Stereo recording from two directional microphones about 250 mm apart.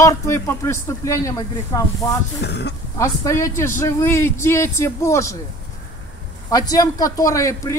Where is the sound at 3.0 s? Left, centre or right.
Centre.